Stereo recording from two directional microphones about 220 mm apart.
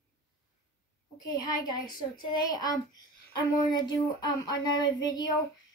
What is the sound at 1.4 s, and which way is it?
A child's voice, 20° left (ahead or behind).